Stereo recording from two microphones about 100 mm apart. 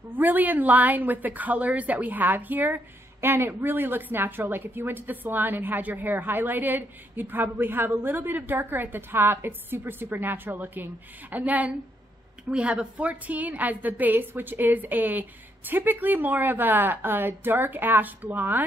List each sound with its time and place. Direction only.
0.1 s a woman's voice: 15° right (ahead or behind)